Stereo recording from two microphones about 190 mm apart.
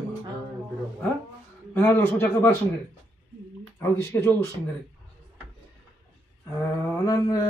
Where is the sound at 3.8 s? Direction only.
15° left (ahead or behind).